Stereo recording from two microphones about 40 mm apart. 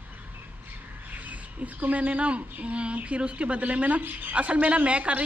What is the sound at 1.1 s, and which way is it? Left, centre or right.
A woman's voice, right.